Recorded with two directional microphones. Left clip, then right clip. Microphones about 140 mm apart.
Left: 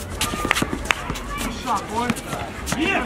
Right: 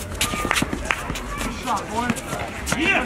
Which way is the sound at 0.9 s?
20° left (ahead or behind).